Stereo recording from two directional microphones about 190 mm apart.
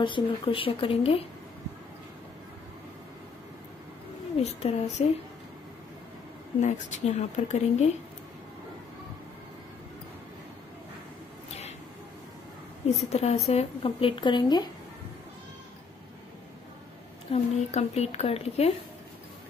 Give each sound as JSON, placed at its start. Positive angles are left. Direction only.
{"t": 0.0, "sound": "speech", "side_deg": 25}
{"t": 4.4, "sound": "speech", "side_deg": 35}
{"t": 6.6, "sound": "speech", "side_deg": 40}
{"t": 13.1, "sound": "speech", "side_deg": 35}
{"t": 17.3, "sound": "speech", "side_deg": 35}